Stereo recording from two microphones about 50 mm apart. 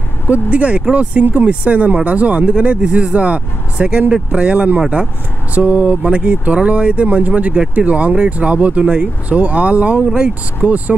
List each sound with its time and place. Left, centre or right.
0.3 s speech: right